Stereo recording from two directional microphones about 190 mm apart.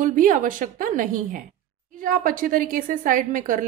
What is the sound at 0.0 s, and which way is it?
A woman's voice, 45° right (ahead or behind).